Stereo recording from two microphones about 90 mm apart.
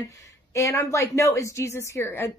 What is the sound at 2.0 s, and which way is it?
Speech, 25° left (ahead or behind).